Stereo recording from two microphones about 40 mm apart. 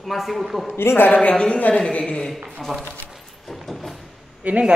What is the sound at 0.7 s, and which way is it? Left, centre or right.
Speech, left.